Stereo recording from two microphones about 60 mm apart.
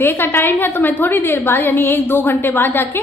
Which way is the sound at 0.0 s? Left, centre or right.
Left.